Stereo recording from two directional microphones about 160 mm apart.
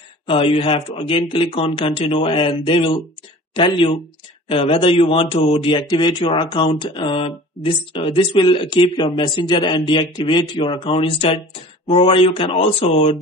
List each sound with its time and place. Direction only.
0.3 s a man's voice: 35° left (ahead or behind)